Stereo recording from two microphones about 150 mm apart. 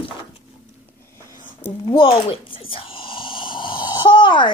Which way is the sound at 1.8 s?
35° left (ahead or behind).